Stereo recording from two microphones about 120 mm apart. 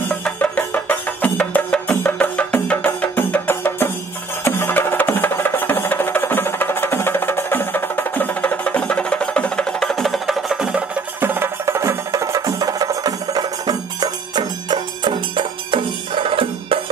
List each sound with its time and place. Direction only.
0.2 s music: 10° left (ahead or behind); by 10.8 s 5° right (ahead or behind)
11.1 s music: 20° right (ahead or behind); by 16.8 s 50° right (ahead or behind)